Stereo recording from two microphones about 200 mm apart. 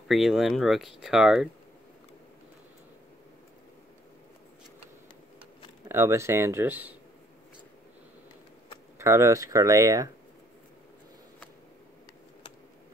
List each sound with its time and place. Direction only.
0.1 s speech: centre (ahead or behind)
5.9 s speech: 15° right (ahead or behind)
8.9 s speech: 15° right (ahead or behind)